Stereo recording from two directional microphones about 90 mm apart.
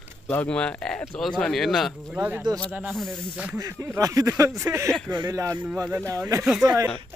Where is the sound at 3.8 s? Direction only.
35° right (ahead or behind).